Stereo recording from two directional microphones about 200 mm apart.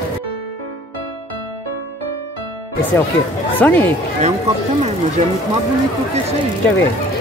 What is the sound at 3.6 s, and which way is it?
Speech, 10° left (ahead or behind).